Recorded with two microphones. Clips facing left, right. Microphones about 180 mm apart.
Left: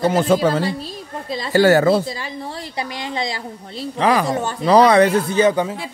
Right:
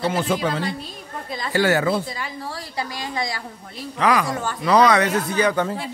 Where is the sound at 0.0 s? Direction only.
45° left (ahead or behind).